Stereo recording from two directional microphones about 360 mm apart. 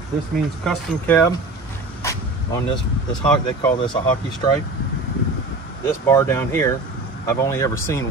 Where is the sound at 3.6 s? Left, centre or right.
Centre.